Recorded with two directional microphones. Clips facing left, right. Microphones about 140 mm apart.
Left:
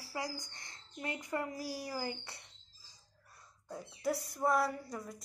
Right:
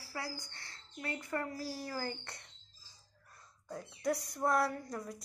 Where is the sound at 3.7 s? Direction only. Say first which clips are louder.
Right 1 dB; 5° left (ahead or behind).